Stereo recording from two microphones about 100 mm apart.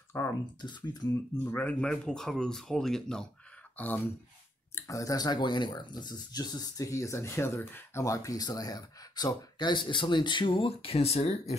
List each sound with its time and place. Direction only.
0.1 s speech: 30° left (ahead or behind)
0.6 s speech: 45° left (ahead or behind)
1.4 s speech: 15° left (ahead or behind)
3.7 s speech: 15° left (ahead or behind)
4.7 s speech: 30° left (ahead or behind); by 11.5 s 90° left